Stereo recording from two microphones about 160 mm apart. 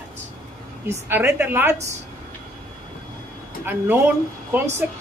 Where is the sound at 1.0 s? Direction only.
10° right (ahead or behind).